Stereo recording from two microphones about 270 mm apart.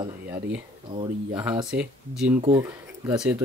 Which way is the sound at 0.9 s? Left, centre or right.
Centre.